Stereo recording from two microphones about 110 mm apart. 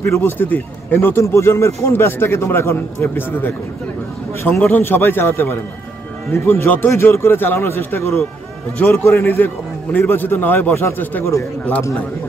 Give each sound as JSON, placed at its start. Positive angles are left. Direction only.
{"t": 0.0, "sound": "a man's voice", "side_deg": 20}
{"t": 4.6, "sound": "a man's voice", "side_deg": 20}